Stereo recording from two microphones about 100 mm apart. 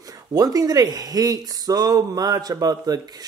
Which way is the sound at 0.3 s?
40° right (ahead or behind).